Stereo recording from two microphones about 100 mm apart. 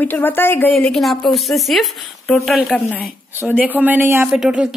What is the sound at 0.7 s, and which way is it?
A woman's voice, 5° left (ahead or behind).